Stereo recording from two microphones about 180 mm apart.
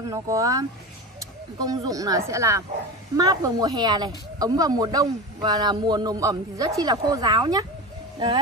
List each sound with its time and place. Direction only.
0.1 s speech: 20° right (ahead or behind)
1.7 s speech: 20° right (ahead or behind)